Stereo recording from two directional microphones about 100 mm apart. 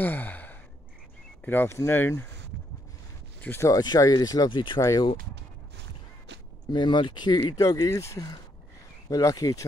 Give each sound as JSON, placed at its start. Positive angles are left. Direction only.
{"t": 0.0, "sound": "sigh", "side_deg": 20}
{"t": 1.4, "sound": "speech", "side_deg": 20}
{"t": 3.3, "sound": "a sound", "side_deg": 20}
{"t": 3.6, "sound": "speech", "side_deg": 40}
{"t": 4.7, "sound": "speech", "side_deg": 30}
{"t": 6.7, "sound": "speech", "side_deg": 50}
{"t": 7.5, "sound": "speech", "side_deg": 35}